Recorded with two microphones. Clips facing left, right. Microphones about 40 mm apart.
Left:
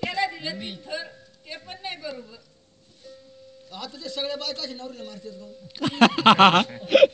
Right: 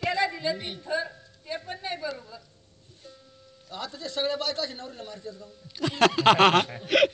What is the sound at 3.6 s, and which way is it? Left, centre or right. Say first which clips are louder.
A man's voice: even; right.